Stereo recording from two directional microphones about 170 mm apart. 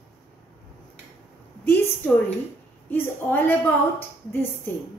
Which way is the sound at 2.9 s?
10° left (ahead or behind).